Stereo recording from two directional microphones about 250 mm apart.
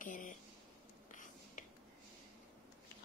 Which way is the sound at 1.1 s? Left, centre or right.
Left.